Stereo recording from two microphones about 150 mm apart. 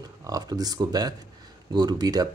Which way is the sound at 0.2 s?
25° right (ahead or behind).